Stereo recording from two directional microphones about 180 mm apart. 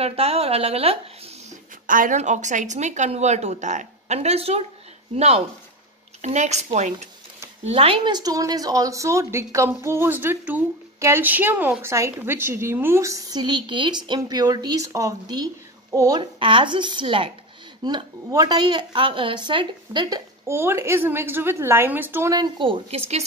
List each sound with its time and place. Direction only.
0.0 s a woman's voice: 35° right (ahead or behind)
1.9 s a woman's voice: 50° right (ahead or behind)